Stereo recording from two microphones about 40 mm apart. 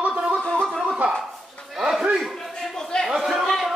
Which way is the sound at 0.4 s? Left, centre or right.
Left.